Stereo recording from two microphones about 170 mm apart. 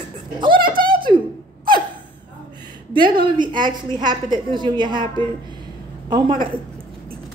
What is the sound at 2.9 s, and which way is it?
A woman's voice, 30° right (ahead or behind).